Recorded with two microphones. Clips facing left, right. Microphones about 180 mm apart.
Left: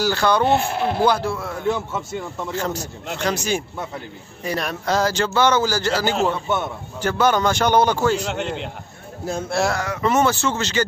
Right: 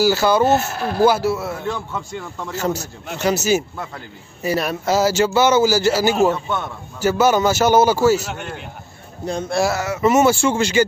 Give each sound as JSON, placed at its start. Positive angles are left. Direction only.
{"t": 0.0, "sound": "speech", "side_deg": -5}
{"t": 0.7, "sound": "speech", "side_deg": 25}
{"t": 1.0, "sound": "a man's voice", "side_deg": -5}
{"t": 2.5, "sound": "a man's voice", "side_deg": -10}